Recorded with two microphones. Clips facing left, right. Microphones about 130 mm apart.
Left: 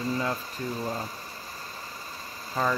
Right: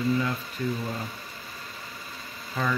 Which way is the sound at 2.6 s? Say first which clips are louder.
Left 2 dB; 35° left (ahead or behind).